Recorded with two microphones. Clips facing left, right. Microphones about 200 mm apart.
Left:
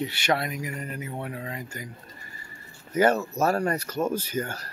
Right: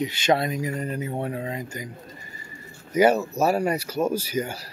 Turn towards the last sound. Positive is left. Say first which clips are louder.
# right 3 dB
turn(degrees=-10)  # may be behind; listen again after turning